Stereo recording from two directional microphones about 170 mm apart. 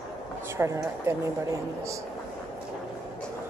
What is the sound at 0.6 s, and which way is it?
Speech, 15° right (ahead or behind).